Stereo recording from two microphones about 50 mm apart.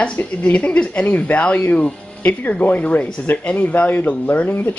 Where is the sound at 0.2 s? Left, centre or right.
Left.